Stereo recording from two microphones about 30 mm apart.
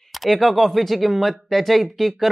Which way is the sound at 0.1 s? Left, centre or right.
Centre.